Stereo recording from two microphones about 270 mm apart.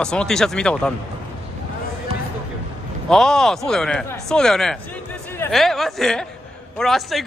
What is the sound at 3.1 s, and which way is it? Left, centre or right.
Speech, centre.